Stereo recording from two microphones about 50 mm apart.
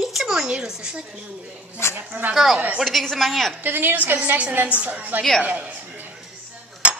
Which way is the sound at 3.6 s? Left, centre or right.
Right.